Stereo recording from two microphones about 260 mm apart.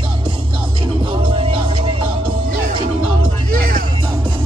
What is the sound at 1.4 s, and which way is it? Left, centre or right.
Music, centre.